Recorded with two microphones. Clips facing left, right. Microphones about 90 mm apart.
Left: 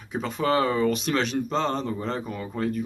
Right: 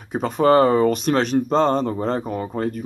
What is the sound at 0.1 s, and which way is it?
Speech, 45° right (ahead or behind).